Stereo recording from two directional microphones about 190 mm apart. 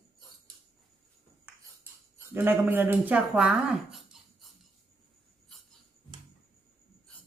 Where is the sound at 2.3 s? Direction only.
10° right (ahead or behind).